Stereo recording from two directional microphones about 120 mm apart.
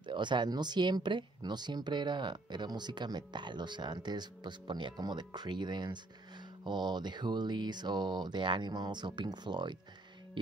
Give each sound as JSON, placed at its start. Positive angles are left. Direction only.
{"t": 0.0, "sound": "speech", "side_deg": -40}
{"t": 10.4, "sound": "music", "side_deg": -40}